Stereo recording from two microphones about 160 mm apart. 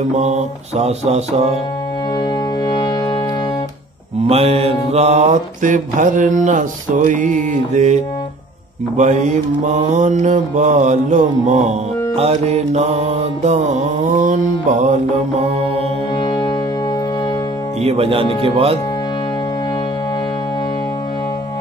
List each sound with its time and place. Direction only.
0.1 s mantra: 45° right (ahead or behind)
2.6 s music: 25° left (ahead or behind)
4.3 s mantra: 40° right (ahead or behind)
16.2 s music: 30° left (ahead or behind)
17.8 s speech: 35° right (ahead or behind)